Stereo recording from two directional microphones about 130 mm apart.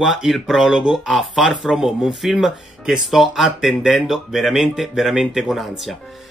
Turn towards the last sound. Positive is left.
turn(degrees=0)  # may be behind; listen again after turning